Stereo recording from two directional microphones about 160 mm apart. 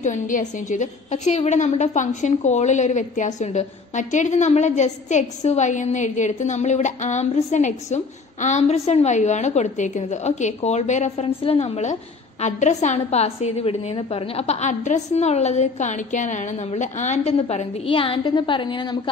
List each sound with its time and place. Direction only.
0.0 s a woman's voice: 50° left (ahead or behind); by 18.9 s 30° left (ahead or behind)